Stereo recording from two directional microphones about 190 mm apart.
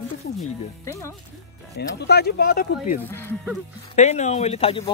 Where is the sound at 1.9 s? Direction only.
60° left (ahead or behind).